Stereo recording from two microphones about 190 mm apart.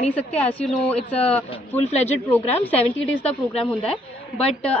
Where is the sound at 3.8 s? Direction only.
30° left (ahead or behind).